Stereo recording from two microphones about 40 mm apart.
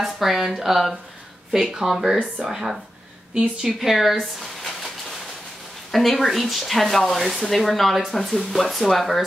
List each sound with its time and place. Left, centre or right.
0.0 s speech: centre
2.3 s a woman's voice: centre
3.9 s speech: centre
4.2 s a sound: centre
5.9 s speech: centre